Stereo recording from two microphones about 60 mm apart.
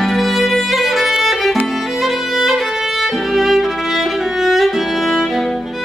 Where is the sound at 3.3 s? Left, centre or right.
Centre.